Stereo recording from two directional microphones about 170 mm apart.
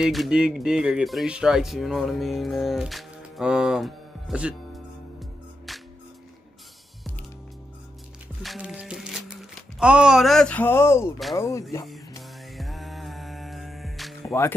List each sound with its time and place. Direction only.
0.0 s speech: centre (ahead or behind)
5.7 s music: centre (ahead or behind)
8.4 s music: 5° right (ahead or behind); by 11.6 s 15° left (ahead or behind)
12.2 s music: centre (ahead or behind)